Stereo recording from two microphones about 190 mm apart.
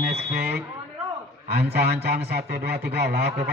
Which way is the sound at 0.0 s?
60° right (ahead or behind).